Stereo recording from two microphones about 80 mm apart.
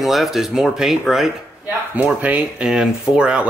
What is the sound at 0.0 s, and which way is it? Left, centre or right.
Speech, centre.